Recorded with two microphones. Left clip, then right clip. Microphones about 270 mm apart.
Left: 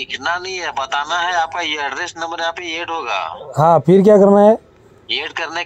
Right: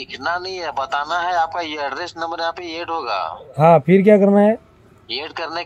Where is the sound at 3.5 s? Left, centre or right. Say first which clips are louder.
Left 1 dB; left.